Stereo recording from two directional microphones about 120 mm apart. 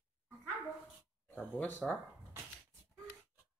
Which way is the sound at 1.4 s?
15° left (ahead or behind).